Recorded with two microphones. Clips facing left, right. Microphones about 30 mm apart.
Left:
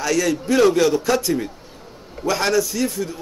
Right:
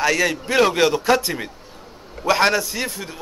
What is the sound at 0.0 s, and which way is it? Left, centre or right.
A man's voice, right.